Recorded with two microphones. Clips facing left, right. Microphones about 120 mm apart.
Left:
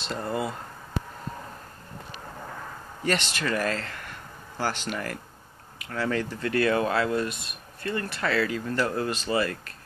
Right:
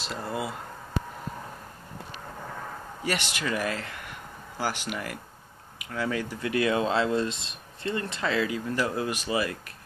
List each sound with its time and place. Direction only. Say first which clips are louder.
0.0 s speech: left 3 dB; 5° right (ahead or behind)
3.0 s speech: left 3 dB; 10° right (ahead or behind)